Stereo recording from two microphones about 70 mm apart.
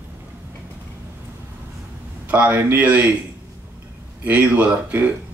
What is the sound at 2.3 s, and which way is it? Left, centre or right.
Speech, right.